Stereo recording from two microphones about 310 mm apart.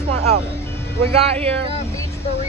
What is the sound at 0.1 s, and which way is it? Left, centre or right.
Music, right.